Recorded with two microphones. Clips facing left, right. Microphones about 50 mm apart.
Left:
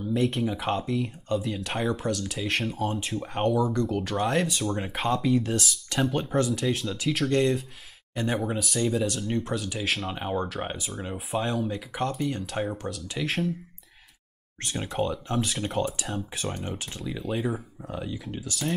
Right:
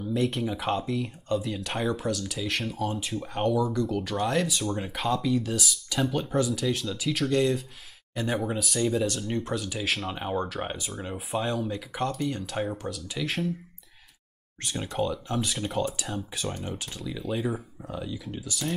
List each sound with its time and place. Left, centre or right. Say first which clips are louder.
0.0 s speech: left 2 dB; centre
3.3 s speech: left 1 dB; centre
6.1 s speech: left 1 dB; centre
14.8 s speech: left 1 dB; centre
17.1 s speech: left 1 dB; centre
17.4 s speech: left 1 dB; centre
17.9 s speech: left 1 dB; centre